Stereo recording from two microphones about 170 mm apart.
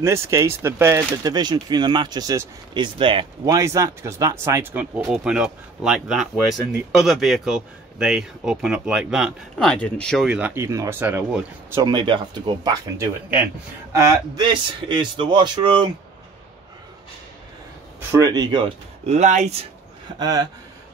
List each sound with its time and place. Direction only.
0.0 s speech: 15° right (ahead or behind)
11.8 s a man's voice: 25° right (ahead or behind)
18.2 s speech: 25° right (ahead or behind); by 19.5 s 45° right (ahead or behind)
20.2 s a man's voice: 25° right (ahead or behind)